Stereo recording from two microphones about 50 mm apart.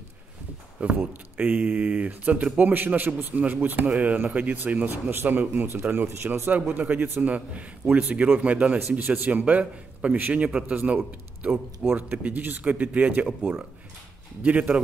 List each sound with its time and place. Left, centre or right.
0.9 s a man's voice: right
2.7 s a man's voice: right
5.1 s a man's voice: right
6.0 s speech: right
6.5 s a man's voice: right
11.8 s speech: centre
12.2 s a man's voice: right